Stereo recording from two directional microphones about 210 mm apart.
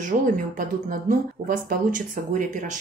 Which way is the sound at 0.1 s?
40° right (ahead or behind).